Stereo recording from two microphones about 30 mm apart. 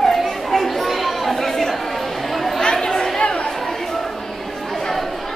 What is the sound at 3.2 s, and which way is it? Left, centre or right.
Chatter, left.